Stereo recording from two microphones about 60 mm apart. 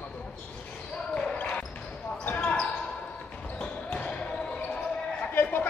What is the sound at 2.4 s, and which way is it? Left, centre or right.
Basketball bounce, left.